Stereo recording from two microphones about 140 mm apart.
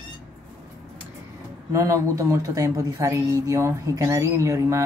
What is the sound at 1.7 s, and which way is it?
A woman's voice, 20° right (ahead or behind).